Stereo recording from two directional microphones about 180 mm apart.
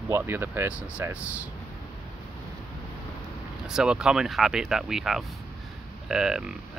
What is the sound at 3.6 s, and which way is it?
Speech, 5° right (ahead or behind).